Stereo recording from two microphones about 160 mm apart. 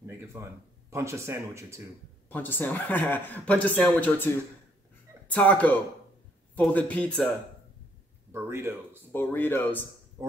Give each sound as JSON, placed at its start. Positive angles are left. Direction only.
{"t": 0.0, "sound": "speech", "side_deg": -15}
{"t": 2.2, "sound": "a man's voice", "side_deg": 10}
{"t": 8.3, "sound": "a man's voice", "side_deg": -15}
{"t": 9.1, "sound": "a man's voice", "side_deg": 15}